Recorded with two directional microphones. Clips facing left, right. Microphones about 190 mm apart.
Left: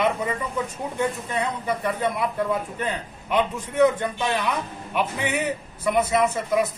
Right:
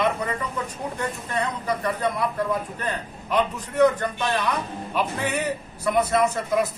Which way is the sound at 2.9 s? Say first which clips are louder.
Right 2 dB; 20° left (ahead or behind).